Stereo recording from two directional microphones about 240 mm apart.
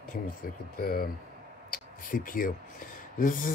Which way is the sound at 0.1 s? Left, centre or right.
Left.